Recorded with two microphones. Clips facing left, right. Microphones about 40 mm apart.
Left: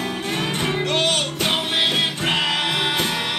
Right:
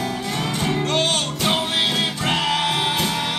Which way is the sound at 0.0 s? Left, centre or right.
Left.